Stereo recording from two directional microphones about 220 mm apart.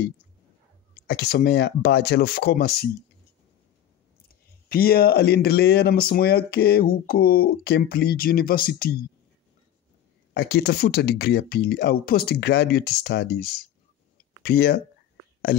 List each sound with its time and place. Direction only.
1.0 s speech: 45° left (ahead or behind)
4.3 s speech: 45° left (ahead or behind)
10.3 s speech: 45° left (ahead or behind)